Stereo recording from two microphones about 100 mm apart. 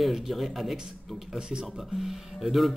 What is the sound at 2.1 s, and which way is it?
Speech, centre (ahead or behind).